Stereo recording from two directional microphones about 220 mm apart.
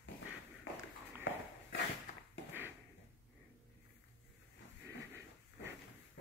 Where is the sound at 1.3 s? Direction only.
60° left (ahead or behind).